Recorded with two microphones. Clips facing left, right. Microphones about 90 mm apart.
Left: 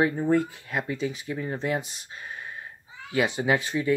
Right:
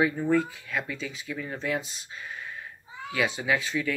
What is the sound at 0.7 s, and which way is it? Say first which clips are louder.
Speech: left 4 dB; 35° left (ahead or behind).